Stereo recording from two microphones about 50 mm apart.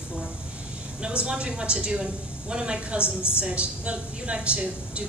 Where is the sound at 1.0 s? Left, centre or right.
Centre.